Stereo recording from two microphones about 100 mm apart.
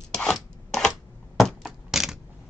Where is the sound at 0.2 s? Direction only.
5° left (ahead or behind).